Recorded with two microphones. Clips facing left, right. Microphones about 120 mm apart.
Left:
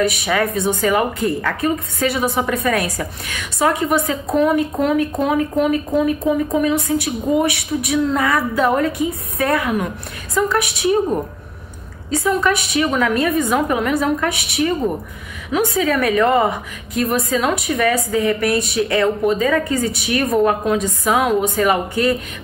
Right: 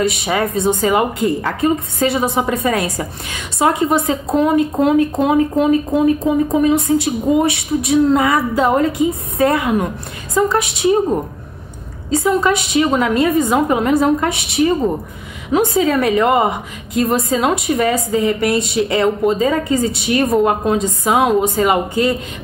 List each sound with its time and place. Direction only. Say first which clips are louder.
0.0 s a woman's voice: right 1 dB; 25° right (ahead or behind)
12.1 s a woman's voice: right 3 dB; 25° right (ahead or behind)